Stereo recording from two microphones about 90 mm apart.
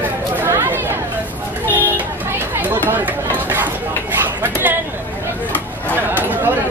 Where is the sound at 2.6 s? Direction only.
20° right (ahead or behind).